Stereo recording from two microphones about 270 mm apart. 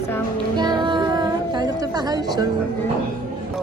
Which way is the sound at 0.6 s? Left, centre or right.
Centre.